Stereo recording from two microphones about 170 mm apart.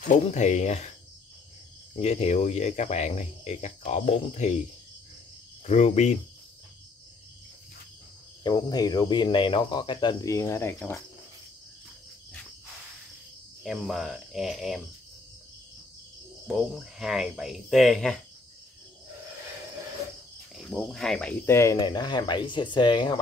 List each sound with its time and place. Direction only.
0.1 s speech: 45° left (ahead or behind)
2.0 s speech: 40° left (ahead or behind)
5.7 s speech: 40° left (ahead or behind)
8.5 s speech: 25° left (ahead or behind)
13.7 s speech: centre (ahead or behind)
16.4 s speech: centre (ahead or behind)
20.5 s speech: centre (ahead or behind); by 21.7 s 15° left (ahead or behind)
21.7 s speech: 25° left (ahead or behind)